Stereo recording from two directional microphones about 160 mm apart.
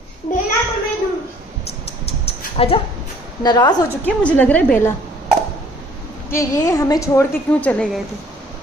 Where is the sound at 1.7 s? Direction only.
40° left (ahead or behind).